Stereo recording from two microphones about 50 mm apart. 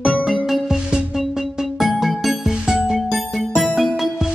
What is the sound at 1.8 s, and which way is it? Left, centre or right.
Music, centre.